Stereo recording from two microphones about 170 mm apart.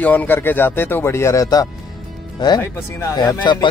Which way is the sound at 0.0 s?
10° left (ahead or behind).